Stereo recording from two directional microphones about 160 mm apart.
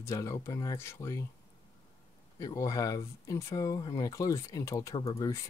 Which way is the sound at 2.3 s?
20° left (ahead or behind).